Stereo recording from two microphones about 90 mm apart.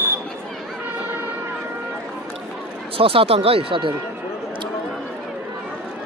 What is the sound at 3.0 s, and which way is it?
Speech, 90° right.